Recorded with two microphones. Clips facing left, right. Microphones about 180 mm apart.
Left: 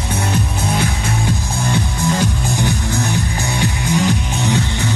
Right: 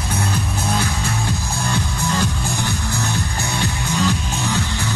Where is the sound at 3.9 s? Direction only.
15° left (ahead or behind).